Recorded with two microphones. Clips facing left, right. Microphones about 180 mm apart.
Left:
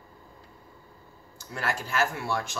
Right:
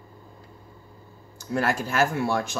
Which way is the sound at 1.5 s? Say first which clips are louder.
Right 6 dB; 45° right (ahead or behind).